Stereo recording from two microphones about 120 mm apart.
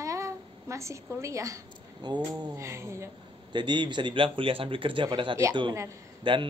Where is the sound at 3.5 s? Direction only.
40° right (ahead or behind).